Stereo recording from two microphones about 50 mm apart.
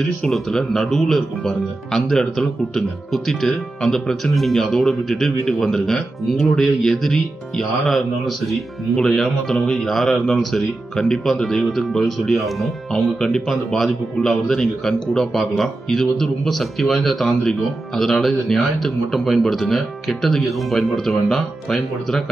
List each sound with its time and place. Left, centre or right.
0.2 s a man's voice: centre